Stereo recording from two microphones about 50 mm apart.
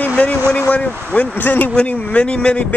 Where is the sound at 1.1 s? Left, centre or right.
Left.